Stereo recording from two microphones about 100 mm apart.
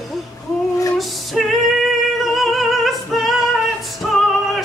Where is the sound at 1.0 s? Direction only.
Centre (ahead or behind).